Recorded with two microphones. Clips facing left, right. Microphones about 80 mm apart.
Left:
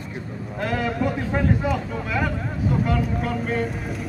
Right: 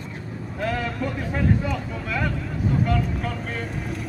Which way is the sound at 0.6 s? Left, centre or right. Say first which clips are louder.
Left 3 dB; centre.